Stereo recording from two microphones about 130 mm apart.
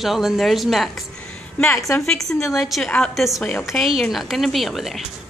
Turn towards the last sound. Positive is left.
turn(degrees=0)  # may be behind; listen again after turning